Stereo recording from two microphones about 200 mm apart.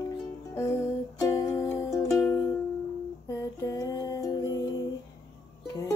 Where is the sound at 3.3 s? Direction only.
15° left (ahead or behind).